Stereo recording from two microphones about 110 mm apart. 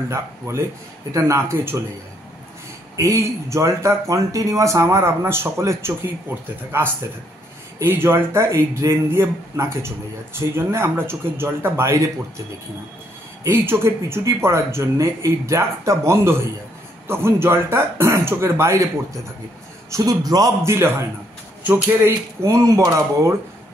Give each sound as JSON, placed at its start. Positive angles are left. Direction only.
{"t": 0.1, "sound": "speech", "side_deg": -25}
{"t": 3.0, "sound": "speech", "side_deg": -30}
{"t": 7.8, "sound": "speech", "side_deg": -20}
{"t": 13.4, "sound": "speech", "side_deg": -20}
{"t": 19.9, "sound": "a man's voice", "side_deg": -35}
{"t": 22.4, "sound": "speech", "side_deg": -30}